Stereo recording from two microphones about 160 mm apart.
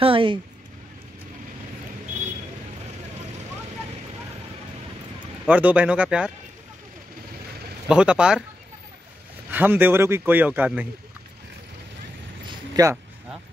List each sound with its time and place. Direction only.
0.0 s speech: 35° right (ahead or behind)
5.5 s speech: 10° right (ahead or behind)
7.9 s speech: 5° right (ahead or behind)
9.5 s speech: 10° right (ahead or behind)
12.4 s a sound: 25° right (ahead or behind)